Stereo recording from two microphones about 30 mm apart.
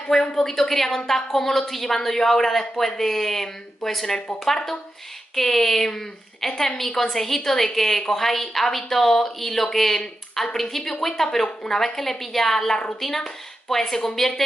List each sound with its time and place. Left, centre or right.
0.1 s a woman's voice: left
0.5 s speech: centre
5.3 s speech: centre
11.4 s a woman's voice: left
11.8 s speech: centre